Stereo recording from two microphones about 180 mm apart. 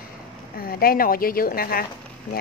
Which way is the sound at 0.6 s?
55° left (ahead or behind).